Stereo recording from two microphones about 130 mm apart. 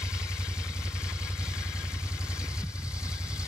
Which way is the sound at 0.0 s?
5° right (ahead or behind).